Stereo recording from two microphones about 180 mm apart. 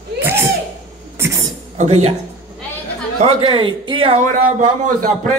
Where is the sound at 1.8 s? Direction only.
35° right (ahead or behind).